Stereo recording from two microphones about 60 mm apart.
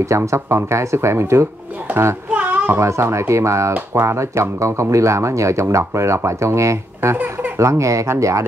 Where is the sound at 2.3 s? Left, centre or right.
Right.